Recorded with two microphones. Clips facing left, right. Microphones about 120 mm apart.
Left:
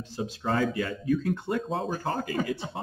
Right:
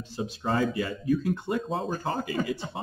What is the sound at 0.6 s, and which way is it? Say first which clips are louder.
Speech: even; 50° left (ahead or behind).